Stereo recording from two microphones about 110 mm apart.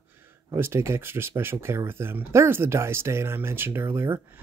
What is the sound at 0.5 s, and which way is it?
Speech, 20° right (ahead or behind).